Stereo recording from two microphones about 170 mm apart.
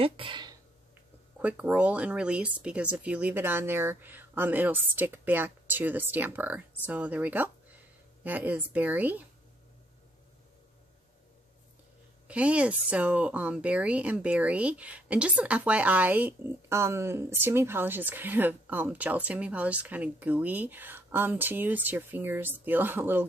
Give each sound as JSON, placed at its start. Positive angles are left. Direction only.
{"t": 0.0, "sound": "speech", "side_deg": -30}
{"t": 1.4, "sound": "speech", "side_deg": -10}
{"t": 12.3, "sound": "speech", "side_deg": -5}